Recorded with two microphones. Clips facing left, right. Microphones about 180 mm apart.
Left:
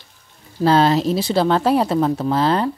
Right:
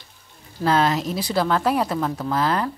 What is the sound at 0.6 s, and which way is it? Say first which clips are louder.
Speech: left 5 dB; 30° left (ahead or behind).